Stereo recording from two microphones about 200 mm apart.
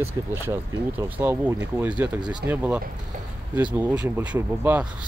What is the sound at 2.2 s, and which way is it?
Speech, 20° right (ahead or behind).